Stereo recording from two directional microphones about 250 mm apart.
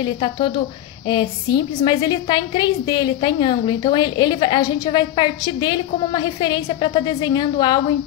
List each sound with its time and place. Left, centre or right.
0.0 s a woman's voice: centre